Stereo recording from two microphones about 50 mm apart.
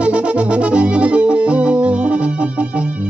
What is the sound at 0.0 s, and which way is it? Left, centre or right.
Music, right.